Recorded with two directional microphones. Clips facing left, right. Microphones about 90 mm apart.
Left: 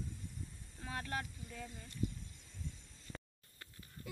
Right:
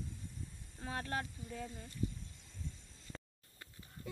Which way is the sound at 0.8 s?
30° right (ahead or behind).